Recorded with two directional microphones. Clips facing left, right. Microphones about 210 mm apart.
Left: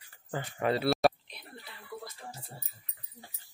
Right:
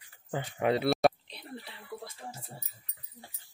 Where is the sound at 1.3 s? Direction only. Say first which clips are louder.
Right 5 dB; 30° right (ahead or behind).